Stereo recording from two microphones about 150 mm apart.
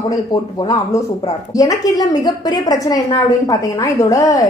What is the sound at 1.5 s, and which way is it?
A woman's voice, 25° left (ahead or behind).